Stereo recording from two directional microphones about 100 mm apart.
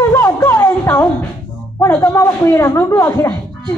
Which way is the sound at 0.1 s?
30° left (ahead or behind).